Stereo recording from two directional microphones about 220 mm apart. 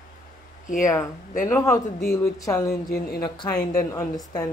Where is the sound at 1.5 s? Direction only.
15° left (ahead or behind).